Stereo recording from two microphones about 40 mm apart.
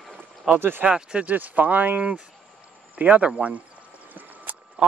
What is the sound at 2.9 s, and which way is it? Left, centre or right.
Speech, right.